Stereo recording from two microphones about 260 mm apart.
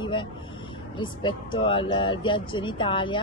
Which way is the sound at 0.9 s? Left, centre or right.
Centre.